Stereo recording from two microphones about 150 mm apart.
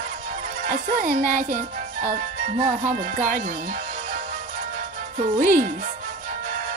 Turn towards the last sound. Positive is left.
turn(degrees=-60)  # may be behind; listen again after turning